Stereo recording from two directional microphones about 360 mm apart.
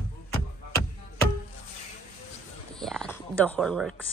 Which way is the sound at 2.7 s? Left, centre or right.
Centre.